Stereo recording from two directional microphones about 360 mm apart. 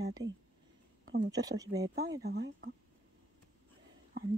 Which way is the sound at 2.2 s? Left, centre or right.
Right.